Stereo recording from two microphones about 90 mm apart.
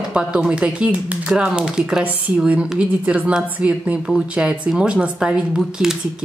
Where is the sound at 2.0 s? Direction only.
20° right (ahead or behind).